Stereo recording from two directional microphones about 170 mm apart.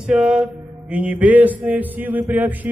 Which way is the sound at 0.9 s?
10° right (ahead or behind).